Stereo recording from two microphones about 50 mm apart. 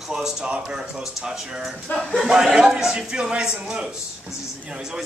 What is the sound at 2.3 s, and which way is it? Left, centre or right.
A man's voice, centre.